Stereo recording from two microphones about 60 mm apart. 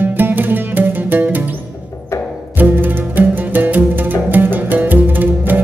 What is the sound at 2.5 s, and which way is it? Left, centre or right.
Music, right.